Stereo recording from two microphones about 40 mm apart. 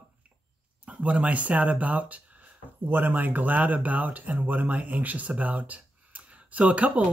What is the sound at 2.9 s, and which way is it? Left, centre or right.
Speech, right.